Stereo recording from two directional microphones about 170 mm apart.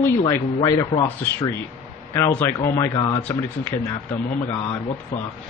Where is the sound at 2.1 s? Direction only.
15° left (ahead or behind).